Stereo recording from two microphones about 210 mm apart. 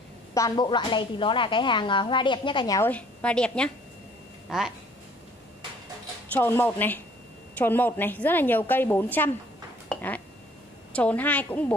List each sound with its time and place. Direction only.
0.3 s a woman's voice: 15° left (ahead or behind); by 4.7 s centre (ahead or behind)
6.3 s a woman's voice: 10° left (ahead or behind)
9.8 s a sound: 5° left (ahead or behind)
10.9 s a woman's voice: 5° left (ahead or behind)